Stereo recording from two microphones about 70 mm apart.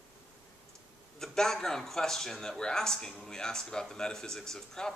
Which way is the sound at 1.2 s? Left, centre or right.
Centre.